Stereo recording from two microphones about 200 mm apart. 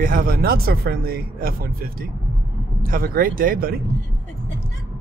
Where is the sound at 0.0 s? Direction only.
45° right (ahead or behind).